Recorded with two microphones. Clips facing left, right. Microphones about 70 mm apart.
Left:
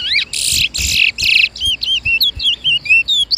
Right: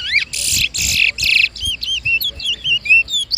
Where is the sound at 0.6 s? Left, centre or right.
Right.